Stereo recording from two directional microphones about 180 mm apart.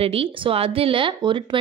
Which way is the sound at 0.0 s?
30° right (ahead or behind).